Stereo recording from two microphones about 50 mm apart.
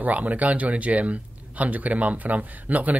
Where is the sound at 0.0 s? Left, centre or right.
Right.